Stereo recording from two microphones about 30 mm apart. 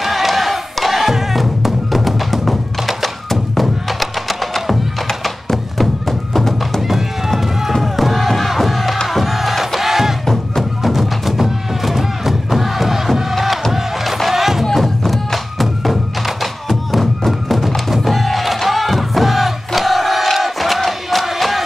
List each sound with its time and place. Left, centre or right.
0.0 s a sound: centre
0.3 s music: centre
6.9 s run: centre
7.7 s crowd: centre
9.0 s music: centre
17.3 s music: centre
21.4 s a sound: centre